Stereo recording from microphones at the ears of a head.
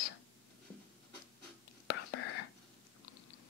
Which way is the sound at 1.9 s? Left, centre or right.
Left.